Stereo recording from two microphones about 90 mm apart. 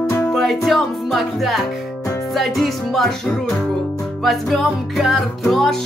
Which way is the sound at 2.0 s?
35° left (ahead or behind).